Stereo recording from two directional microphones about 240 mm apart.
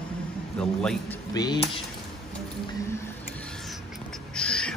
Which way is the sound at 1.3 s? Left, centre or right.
Centre.